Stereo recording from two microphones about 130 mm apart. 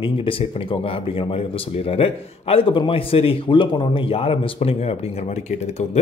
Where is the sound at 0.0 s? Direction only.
45° left (ahead or behind).